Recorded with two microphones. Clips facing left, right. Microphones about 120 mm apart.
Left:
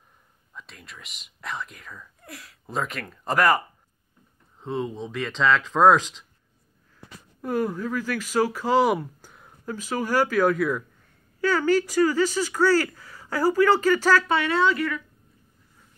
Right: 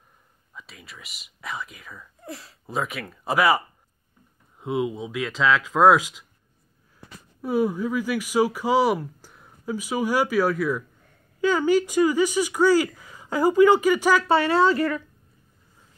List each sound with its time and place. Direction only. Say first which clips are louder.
0.5 s speech: even; 5° right (ahead or behind)
2.2 s speech: right 7 dB; 30° right (ahead or behind)
2.6 s a woman's voice: right 1 dB; 5° right (ahead or behind)
7.4 s a woman's voice: right 3 dB; 10° right (ahead or behind)
9.8 s a woman's voice: even; 10° right (ahead or behind)
11.4 s a woman's voice: right 1 dB; 15° right (ahead or behind)
14.2 s speech: right 3 dB; 35° right (ahead or behind)